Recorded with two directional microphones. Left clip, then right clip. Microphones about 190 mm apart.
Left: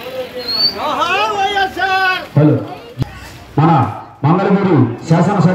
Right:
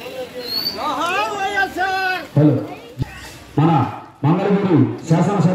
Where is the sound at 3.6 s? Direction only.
25° right (ahead or behind).